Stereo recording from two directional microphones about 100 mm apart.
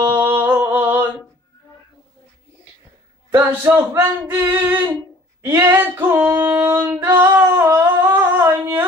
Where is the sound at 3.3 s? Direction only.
25° right (ahead or behind).